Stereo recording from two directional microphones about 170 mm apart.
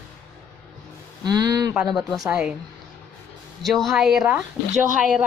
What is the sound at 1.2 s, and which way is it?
Speech, 25° right (ahead or behind).